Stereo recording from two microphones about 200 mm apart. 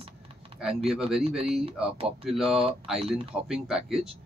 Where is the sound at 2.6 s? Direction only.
30° right (ahead or behind).